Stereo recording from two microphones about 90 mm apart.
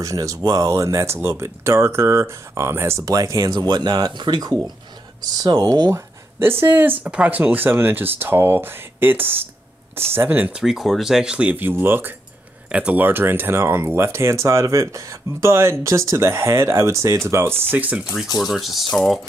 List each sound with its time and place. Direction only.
0.0 s speech: 40° right (ahead or behind)
3.1 s speech: 40° right (ahead or behind)
3.5 s speech: 55° right (ahead or behind); by 10.5 s 25° right (ahead or behind)
10.5 s speech: 5° right (ahead or behind)
18.4 s speech: centre (ahead or behind)